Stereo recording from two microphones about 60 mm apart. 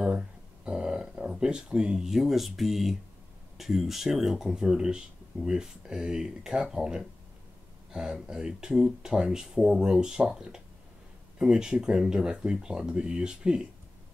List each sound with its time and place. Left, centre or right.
0.7 s speech: centre